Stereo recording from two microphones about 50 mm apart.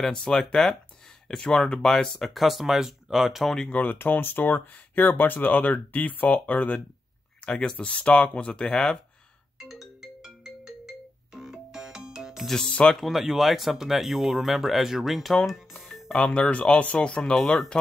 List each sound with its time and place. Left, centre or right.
0.1 s speech: centre
2.3 s speech: centre
3.7 s speech: left
8.6 s speech: centre
9.6 s ringtone: centre
12.4 s speech: centre
13.0 s speech: centre
16.3 s speech: left